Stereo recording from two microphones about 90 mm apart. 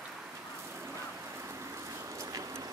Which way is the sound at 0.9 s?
35° right (ahead or behind).